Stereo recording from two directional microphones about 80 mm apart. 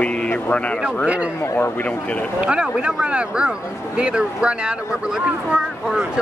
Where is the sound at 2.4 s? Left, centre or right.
Centre.